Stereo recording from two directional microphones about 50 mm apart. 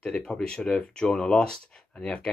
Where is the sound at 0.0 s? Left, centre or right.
Centre.